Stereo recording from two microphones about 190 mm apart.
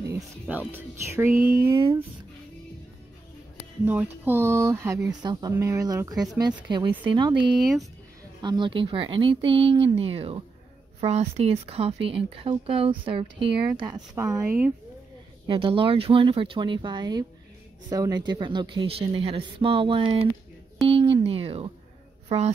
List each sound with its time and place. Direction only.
0.5 s speech: 10° right (ahead or behind)
3.8 s speech: 10° right (ahead or behind)
7.5 s speech: centre (ahead or behind)
8.4 s speech: 25° right (ahead or behind)
15.4 s speech: 25° right (ahead or behind)
20.9 s a sound: 30° right (ahead or behind)